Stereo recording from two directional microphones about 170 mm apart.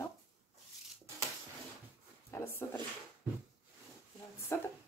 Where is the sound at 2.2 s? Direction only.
15° left (ahead or behind).